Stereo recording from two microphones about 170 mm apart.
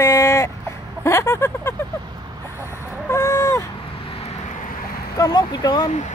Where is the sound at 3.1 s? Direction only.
15° left (ahead or behind).